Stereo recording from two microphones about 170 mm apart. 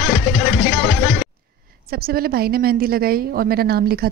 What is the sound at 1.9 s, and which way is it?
A woman's voice, 60° right (ahead or behind).